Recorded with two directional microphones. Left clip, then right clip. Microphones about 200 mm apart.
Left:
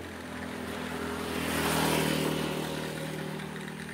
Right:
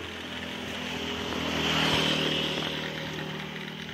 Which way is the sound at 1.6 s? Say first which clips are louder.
Right 3 dB; 55° left (ahead or behind).